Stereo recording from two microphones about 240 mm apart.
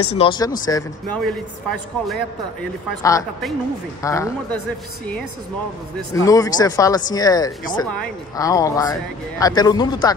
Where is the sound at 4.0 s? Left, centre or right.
Centre.